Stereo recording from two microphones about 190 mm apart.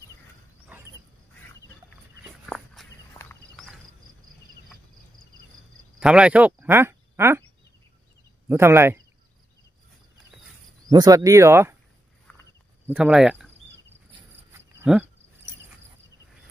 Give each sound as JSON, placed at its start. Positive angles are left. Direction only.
{"t": 2.5, "sound": "walk", "side_deg": 0}
{"t": 5.9, "sound": "speech", "side_deg": -5}
{"t": 8.5, "sound": "speech", "side_deg": -15}
{"t": 10.9, "sound": "speech", "side_deg": -20}
{"t": 12.8, "sound": "speech", "side_deg": -5}
{"t": 14.5, "sound": "a sound", "side_deg": -10}